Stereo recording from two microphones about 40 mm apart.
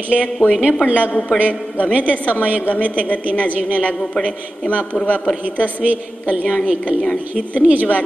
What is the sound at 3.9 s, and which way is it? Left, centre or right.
Speech, centre.